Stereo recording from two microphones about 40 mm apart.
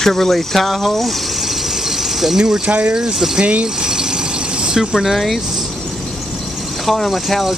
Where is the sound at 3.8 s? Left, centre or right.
Centre.